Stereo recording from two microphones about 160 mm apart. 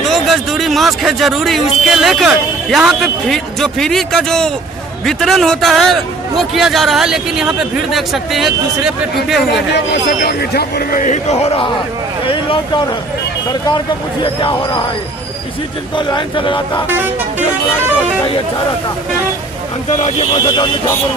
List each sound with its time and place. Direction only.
0.1 s a man's voice: centre (ahead or behind)
9.8 s a man's voice: 85° left; by 12.8 s 35° left (ahead or behind)
14.2 s speech: 30° left (ahead or behind)
16.0 s speech: 30° left (ahead or behind)
20.0 s speech: 45° left (ahead or behind)